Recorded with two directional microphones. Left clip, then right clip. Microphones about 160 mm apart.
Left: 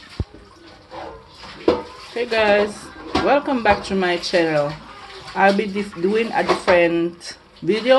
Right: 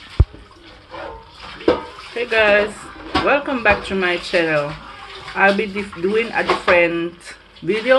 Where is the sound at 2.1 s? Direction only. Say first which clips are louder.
Right 2 dB; 35° left (ahead or behind).